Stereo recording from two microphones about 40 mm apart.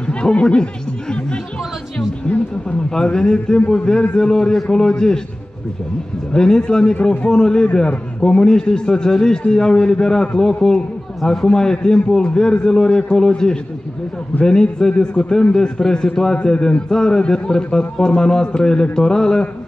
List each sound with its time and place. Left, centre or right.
0.0 s music: left
2.9 s a man's voice: centre
6.3 s a man's voice: centre